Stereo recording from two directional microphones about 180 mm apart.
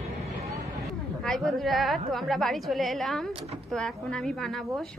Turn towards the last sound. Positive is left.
turn(degrees=0)  # may be behind; listen again after turning